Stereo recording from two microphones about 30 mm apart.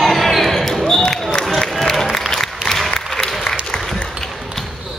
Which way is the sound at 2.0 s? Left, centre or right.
Centre.